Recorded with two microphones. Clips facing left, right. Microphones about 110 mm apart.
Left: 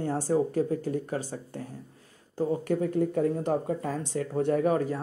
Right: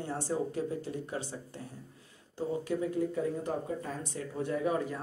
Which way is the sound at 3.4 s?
80° left.